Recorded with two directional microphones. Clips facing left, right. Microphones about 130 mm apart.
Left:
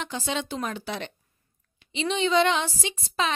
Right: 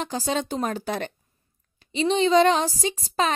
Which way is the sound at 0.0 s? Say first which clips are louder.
Right 4 dB; 40° right (ahead or behind).